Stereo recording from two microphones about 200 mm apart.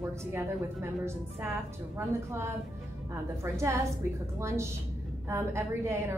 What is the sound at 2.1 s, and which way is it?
A woman's voice, 15° right (ahead or behind).